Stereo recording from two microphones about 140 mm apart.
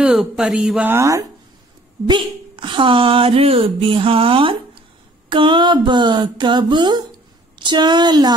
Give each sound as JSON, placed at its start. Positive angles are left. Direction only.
{"t": 0.0, "sound": "speech", "side_deg": -5}
{"t": 2.0, "sound": "speech", "side_deg": -35}